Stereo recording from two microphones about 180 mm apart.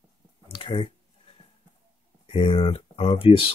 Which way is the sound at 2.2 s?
30° left (ahead or behind).